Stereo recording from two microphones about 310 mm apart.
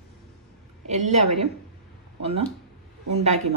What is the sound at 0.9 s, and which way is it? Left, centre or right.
Speech, right.